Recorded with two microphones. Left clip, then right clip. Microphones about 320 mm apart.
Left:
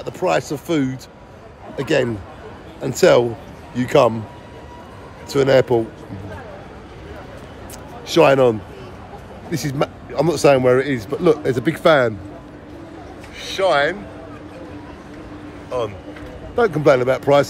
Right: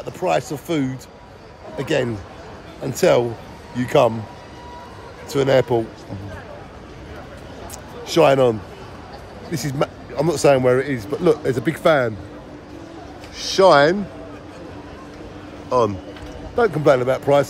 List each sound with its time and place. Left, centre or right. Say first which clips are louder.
0.0 s speech: left 1 dB; centre
5.3 s speech: left 2 dB; centre
8.1 s speech: left 1 dB; centre
13.4 s a man's voice: right 4 dB; centre
16.5 s speech: left 1 dB; centre